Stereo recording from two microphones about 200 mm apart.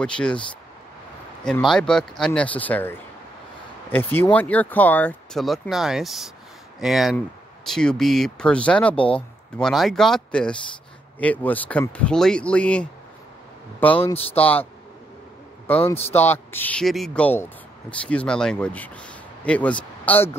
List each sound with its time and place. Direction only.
0.0 s speech: 5° left (ahead or behind)
1.4 s speech: 5° left (ahead or behind)
14.1 s speech: 30° left (ahead or behind)
14.4 s a man's voice: 10° left (ahead or behind)